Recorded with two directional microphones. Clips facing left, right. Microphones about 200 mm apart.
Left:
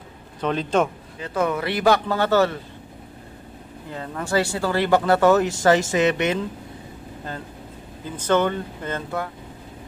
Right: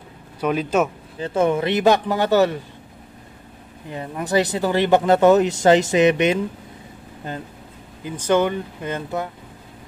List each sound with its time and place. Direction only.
0.4 s speech: 10° right (ahead or behind)
1.2 s speech: 25° right (ahead or behind)
3.9 s speech: 15° right (ahead or behind)
8.0 s speech: 15° right (ahead or behind)